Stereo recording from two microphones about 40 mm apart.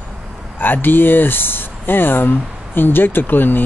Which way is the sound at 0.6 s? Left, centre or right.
Left.